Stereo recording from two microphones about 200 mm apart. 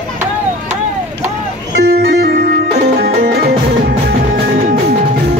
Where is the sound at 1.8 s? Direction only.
50° right (ahead or behind).